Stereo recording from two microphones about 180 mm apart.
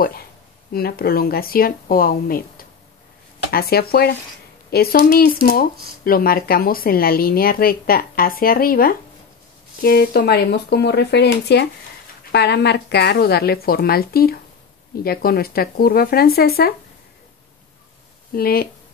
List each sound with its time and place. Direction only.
0.7 s speech: 60° left (ahead or behind)
18.3 s speech: 55° left (ahead or behind)